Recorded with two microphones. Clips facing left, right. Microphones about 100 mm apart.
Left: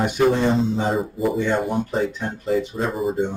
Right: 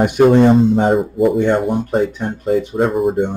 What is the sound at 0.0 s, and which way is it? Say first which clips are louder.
Speech: right 8 dB; 55° right (ahead or behind).